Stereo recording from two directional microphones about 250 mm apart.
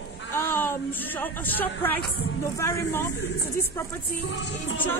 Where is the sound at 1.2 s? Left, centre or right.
Centre.